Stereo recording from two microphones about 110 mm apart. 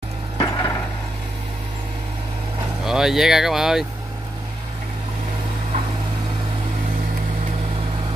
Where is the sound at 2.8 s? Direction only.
5° right (ahead or behind).